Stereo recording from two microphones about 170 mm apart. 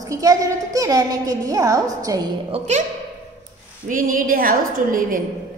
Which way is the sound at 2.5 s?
40° right (ahead or behind).